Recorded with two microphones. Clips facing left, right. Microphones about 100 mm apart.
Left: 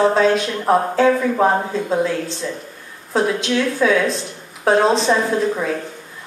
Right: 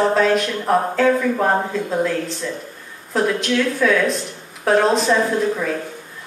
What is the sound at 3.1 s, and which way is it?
A woman's voice, 25° left (ahead or behind).